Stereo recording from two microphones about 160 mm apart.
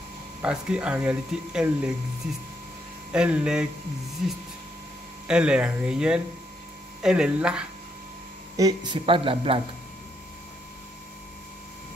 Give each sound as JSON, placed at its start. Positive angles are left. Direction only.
{"t": 0.4, "sound": "speech", "side_deg": -5}
{"t": 3.1, "sound": "speech", "side_deg": -5}
{"t": 8.5, "sound": "speech", "side_deg": -25}